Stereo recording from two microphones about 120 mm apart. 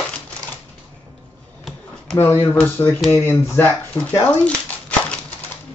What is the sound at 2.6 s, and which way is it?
Speech, 15° left (ahead or behind).